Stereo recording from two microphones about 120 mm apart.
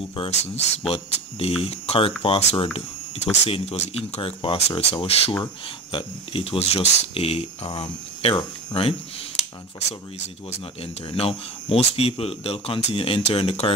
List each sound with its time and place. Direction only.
0.8 s speech: 55° left (ahead or behind)
4.2 s speech: 45° left (ahead or behind)
5.3 s speech: 40° left (ahead or behind)
10.8 s speech: 55° left (ahead or behind)